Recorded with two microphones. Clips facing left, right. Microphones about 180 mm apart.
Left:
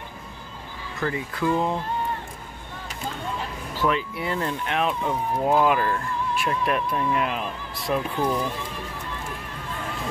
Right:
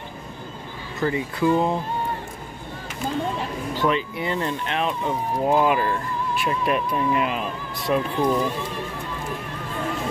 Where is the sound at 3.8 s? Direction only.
5° left (ahead or behind).